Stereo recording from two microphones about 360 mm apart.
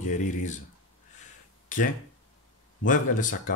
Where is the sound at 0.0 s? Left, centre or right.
Centre.